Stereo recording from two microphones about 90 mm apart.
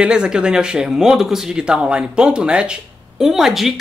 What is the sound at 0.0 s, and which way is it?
Speech, 10° right (ahead or behind).